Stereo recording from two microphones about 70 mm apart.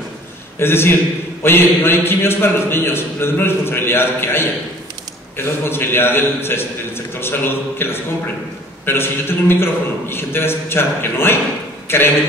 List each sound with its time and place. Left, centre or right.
0.6 s a man's voice: left